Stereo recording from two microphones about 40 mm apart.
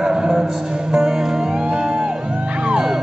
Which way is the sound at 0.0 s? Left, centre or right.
Right.